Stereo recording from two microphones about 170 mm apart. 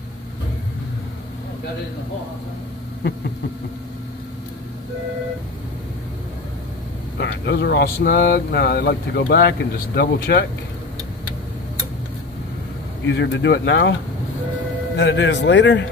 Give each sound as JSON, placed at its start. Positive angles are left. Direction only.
{"t": 7.2, "sound": "speech", "side_deg": 85}
{"t": 13.0, "sound": "speech", "side_deg": 90}
{"t": 15.0, "sound": "speech", "side_deg": 90}